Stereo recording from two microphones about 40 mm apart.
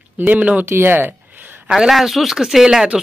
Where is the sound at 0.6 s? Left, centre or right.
Right.